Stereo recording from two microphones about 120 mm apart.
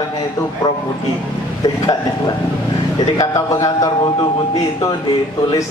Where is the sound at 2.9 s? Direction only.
30° left (ahead or behind).